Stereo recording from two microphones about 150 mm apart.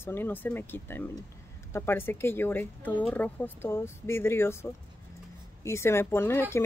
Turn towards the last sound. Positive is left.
turn(degrees=15)  # may be behind; listen again after turning